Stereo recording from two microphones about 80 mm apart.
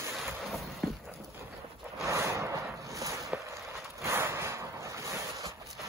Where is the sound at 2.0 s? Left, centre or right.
Right.